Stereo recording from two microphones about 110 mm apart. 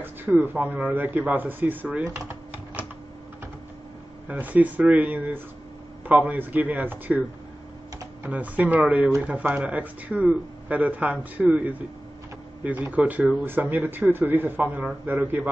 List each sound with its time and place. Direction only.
0.0 s speech: 15° right (ahead or behind)
2.1 s a sound: 20° right (ahead or behind)
4.3 s speech: 15° right (ahead or behind)